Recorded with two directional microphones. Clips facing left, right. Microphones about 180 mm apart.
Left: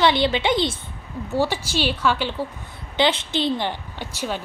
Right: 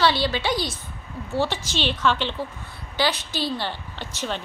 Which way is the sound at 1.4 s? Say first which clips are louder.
Left 3 dB; 10° left (ahead or behind).